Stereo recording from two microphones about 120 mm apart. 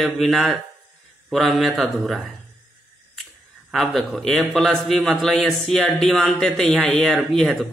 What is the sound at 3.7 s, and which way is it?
A man's voice, 5° left (ahead or behind).